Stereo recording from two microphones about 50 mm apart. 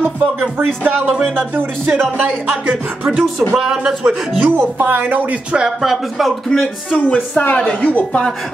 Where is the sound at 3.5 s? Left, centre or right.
Centre.